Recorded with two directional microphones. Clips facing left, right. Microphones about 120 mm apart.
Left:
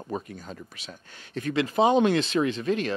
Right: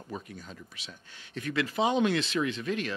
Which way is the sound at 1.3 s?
40° left (ahead or behind).